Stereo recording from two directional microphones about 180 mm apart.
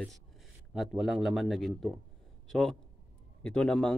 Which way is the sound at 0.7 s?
Centre (ahead or behind).